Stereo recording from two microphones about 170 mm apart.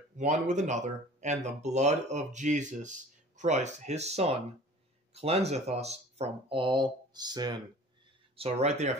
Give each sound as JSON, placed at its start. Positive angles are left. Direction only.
{"t": 0.2, "sound": "speech", "side_deg": -45}
{"t": 8.4, "sound": "speech", "side_deg": -40}